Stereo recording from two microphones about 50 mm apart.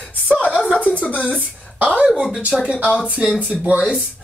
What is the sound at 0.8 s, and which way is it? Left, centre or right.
Speech, left.